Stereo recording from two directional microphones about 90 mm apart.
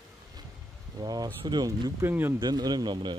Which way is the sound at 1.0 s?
45° right (ahead or behind).